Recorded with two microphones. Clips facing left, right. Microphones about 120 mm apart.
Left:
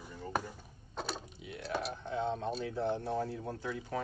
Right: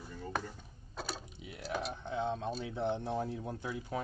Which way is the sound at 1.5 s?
25° left (ahead or behind).